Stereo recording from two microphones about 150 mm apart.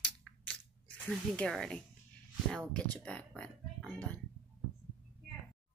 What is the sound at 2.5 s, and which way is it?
A woman's voice, 5° left (ahead or behind).